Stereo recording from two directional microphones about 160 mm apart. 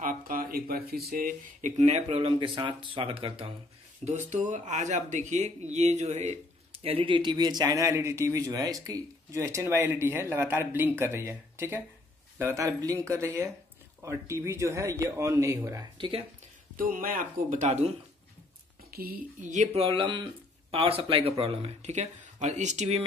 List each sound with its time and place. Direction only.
0.0 s a sound: 60° right (ahead or behind)
1.2 s speech: 50° right (ahead or behind)
4.0 s speech: 45° right (ahead or behind); by 15.9 s 20° right (ahead or behind)
16.0 s speech: 35° right (ahead or behind)
16.7 s speech: 60° right (ahead or behind); by 17.9 s 45° right (ahead or behind)
18.9 s speech: 70° right (ahead or behind); by 23.0 s 45° right (ahead or behind)